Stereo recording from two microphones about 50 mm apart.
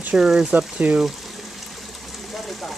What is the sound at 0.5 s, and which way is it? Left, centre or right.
Speech, right.